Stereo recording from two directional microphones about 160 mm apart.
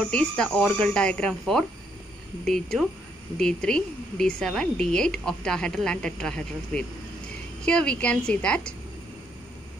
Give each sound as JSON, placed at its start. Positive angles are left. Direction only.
{"t": 0.0, "sound": "speech", "side_deg": 5}